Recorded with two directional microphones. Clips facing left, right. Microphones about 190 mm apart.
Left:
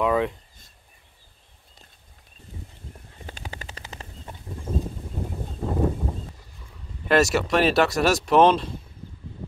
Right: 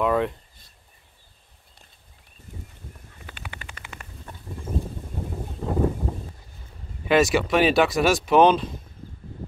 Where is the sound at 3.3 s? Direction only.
40° left (ahead or behind).